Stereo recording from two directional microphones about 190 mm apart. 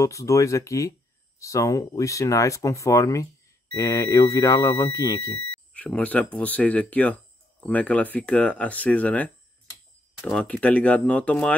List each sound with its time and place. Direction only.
0.0 s speech: 15° left (ahead or behind)
5.7 s speech: 5° left (ahead or behind)